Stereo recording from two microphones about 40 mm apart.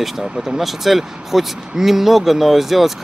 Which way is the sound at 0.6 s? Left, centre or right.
Centre.